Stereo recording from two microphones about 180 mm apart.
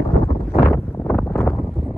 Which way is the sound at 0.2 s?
55° left (ahead or behind).